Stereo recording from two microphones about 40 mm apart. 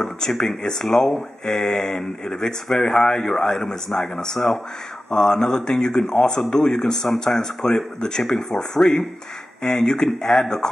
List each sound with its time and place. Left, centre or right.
0.0 s speech: centre
9.6 s speech: centre